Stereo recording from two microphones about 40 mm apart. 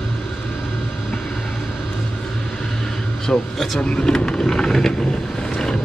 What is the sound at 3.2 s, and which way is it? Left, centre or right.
Speech, centre.